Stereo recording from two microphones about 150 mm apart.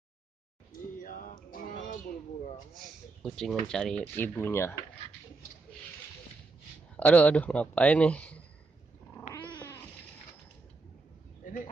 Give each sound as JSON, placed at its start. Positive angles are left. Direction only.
{"t": 1.0, "sound": "music", "side_deg": 65}
{"t": 2.7, "sound": "speech", "side_deg": 0}
{"t": 7.0, "sound": "speech", "side_deg": 10}
{"t": 9.3, "sound": "cat", "side_deg": 30}
{"t": 11.4, "sound": "a sound", "side_deg": 60}